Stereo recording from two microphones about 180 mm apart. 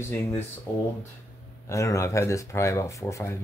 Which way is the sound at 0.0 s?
15° left (ahead or behind).